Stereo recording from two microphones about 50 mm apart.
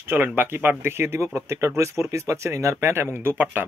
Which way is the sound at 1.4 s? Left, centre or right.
Right.